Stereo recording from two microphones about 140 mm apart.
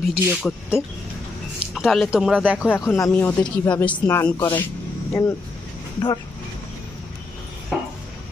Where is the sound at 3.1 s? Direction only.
10° left (ahead or behind).